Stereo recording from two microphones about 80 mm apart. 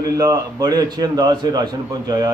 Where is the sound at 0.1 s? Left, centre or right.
Right.